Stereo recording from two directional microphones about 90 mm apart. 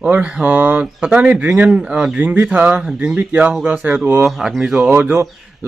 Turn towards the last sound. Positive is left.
turn(degrees=-30)  # may be behind; listen again after turning